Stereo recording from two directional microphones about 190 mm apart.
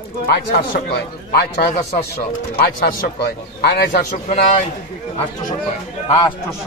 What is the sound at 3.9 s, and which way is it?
Speech, 40° left (ahead or behind).